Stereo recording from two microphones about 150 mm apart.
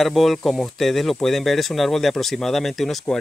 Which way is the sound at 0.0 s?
Centre (ahead or behind).